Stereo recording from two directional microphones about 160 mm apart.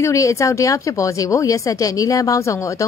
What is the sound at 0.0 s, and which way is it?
Speech, 20° left (ahead or behind).